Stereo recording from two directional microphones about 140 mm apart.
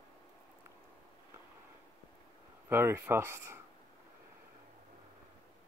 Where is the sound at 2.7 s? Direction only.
15° right (ahead or behind).